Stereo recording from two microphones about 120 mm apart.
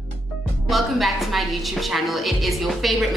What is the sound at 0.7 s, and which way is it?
A woman's voice, centre (ahead or behind).